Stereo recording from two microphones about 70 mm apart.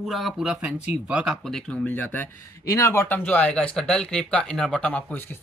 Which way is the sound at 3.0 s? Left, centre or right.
Left.